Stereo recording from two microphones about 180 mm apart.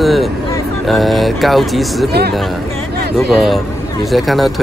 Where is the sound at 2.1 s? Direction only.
60° right (ahead or behind).